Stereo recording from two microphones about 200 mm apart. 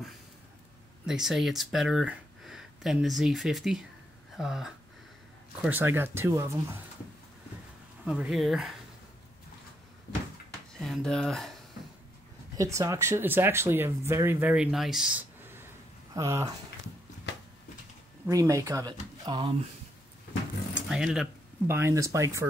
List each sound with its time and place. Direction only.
1.0 s speech: centre (ahead or behind)
8.0 s speech: 5° right (ahead or behind)
10.8 s speech: centre (ahead or behind)
12.5 s speech: 15° right (ahead or behind)
18.2 s speech: 15° right (ahead or behind)
20.7 s speech: 5° right (ahead or behind)